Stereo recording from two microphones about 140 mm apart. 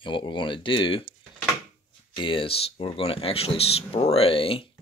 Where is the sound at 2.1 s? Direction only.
35° left (ahead or behind).